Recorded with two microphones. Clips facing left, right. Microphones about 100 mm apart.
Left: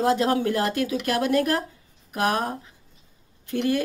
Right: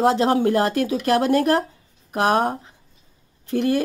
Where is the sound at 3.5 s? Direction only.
35° right (ahead or behind).